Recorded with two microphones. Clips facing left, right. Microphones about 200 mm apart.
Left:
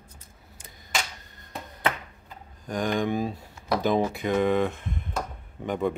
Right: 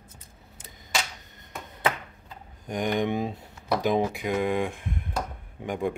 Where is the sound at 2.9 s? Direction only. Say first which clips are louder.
Even; 20° right (ahead or behind).